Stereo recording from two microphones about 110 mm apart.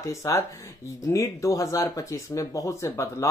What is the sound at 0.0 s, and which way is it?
Speech, 30° left (ahead or behind).